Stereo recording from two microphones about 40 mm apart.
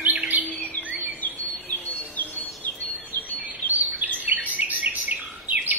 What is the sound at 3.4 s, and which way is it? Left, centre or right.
Bird vocalization, right.